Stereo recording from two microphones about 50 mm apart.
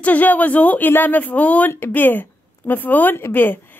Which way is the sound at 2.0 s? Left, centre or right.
Left.